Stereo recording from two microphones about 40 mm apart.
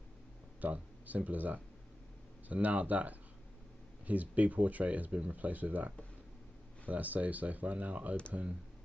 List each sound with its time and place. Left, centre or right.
0.6 s speech: right